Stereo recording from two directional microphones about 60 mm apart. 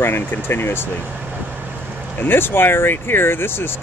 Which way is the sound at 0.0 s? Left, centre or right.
Left.